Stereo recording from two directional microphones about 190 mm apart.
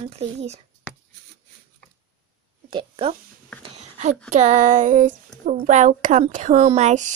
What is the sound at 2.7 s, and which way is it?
Speech, 25° right (ahead or behind).